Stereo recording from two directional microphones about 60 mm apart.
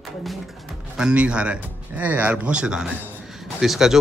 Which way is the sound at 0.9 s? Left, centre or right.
Centre.